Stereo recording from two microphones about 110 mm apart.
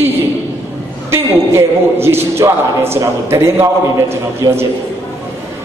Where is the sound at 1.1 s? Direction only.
25° right (ahead or behind).